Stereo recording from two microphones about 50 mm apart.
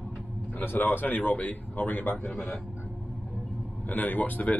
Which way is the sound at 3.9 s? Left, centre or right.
Left.